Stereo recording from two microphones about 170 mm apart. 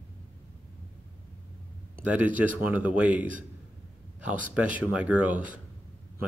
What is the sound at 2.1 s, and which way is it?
A man's voice, 10° right (ahead or behind).